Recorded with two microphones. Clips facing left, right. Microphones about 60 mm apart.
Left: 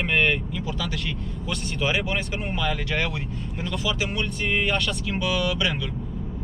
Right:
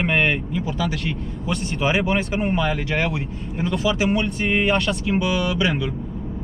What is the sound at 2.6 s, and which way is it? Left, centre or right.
Speech, centre.